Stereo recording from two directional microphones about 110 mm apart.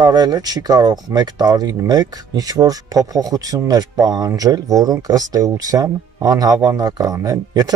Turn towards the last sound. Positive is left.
turn(degrees=-35)  # may be behind; listen again after turning